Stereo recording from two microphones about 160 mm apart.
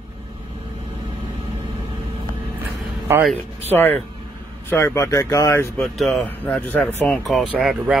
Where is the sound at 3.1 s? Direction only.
15° right (ahead or behind).